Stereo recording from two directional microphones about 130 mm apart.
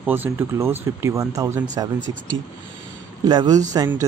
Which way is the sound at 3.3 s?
35° right (ahead or behind).